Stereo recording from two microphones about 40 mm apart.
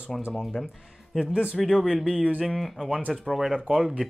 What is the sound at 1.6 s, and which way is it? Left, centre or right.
Speech, centre.